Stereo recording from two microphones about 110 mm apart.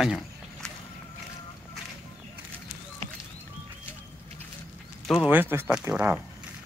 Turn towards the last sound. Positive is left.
turn(degrees=-15)  # may be behind; listen again after turning